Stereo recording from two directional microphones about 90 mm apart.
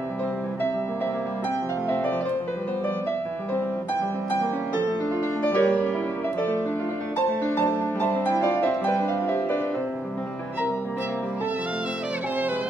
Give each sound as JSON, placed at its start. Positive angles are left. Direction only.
{"t": 5.4, "sound": "music", "side_deg": 15}
{"t": 7.5, "sound": "music", "side_deg": 20}